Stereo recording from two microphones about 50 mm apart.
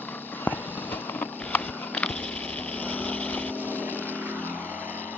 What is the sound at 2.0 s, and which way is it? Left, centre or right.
Vehicle, left.